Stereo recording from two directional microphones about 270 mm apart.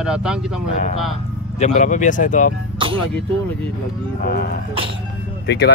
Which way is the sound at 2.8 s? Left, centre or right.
Centre.